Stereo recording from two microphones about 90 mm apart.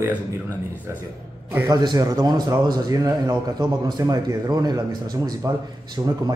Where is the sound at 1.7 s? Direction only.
50° right (ahead or behind).